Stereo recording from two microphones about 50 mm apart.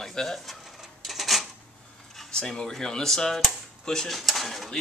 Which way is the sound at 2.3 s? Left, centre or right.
Centre.